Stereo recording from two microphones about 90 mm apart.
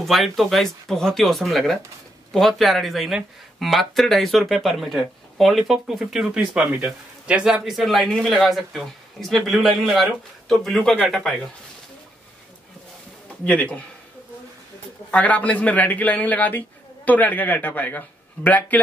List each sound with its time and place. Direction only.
0.0 s speech: centre (ahead or behind)
13.4 s a man's voice: 15° left (ahead or behind)
15.0 s a man's voice: 15° left (ahead or behind)